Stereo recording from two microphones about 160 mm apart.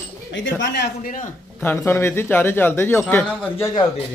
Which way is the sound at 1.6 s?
15° left (ahead or behind).